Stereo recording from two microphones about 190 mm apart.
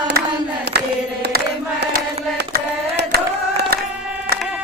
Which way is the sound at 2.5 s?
55° right (ahead or behind).